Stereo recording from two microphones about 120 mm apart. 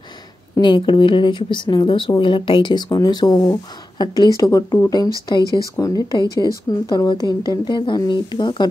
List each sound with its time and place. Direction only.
0.6 s speech: 40° left (ahead or behind)
5.4 s speech: 30° right (ahead or behind)
5.8 s speech: 30° left (ahead or behind)